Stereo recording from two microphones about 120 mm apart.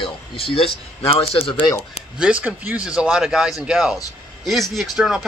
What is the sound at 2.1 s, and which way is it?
A man's voice, 10° right (ahead or behind).